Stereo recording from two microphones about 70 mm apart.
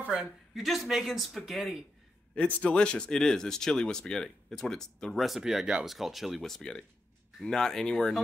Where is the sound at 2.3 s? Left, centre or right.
Centre.